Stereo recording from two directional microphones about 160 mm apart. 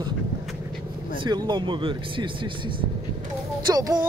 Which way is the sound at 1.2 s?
30° right (ahead or behind).